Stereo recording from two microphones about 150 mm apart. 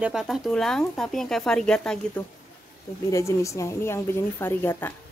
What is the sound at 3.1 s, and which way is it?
A woman's voice, 20° left (ahead or behind).